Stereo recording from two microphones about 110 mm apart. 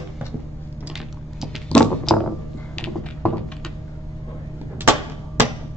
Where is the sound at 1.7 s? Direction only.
5° left (ahead or behind).